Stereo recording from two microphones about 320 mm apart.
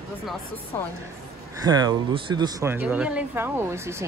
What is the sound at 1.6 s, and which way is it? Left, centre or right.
Speech, centre.